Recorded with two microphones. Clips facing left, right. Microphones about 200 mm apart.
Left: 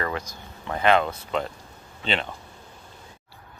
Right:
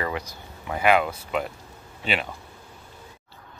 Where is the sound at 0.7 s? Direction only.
10° right (ahead or behind).